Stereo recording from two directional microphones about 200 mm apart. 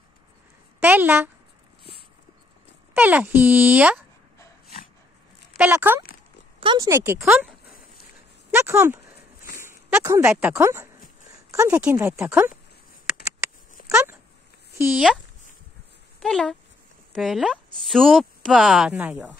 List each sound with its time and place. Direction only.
0.7 s a woman's voice: 10° right (ahead or behind)
2.9 s speech: 10° right (ahead or behind)
5.6 s speech: 10° right (ahead or behind)
6.6 s speech: 20° right (ahead or behind)
8.5 s a sound: 10° right (ahead or behind)
9.6 s speech: 10° right (ahead or behind)
13.8 s a sound: 10° right (ahead or behind)
14.8 s speech: 5° right (ahead or behind)
16.2 s speech: centre (ahead or behind)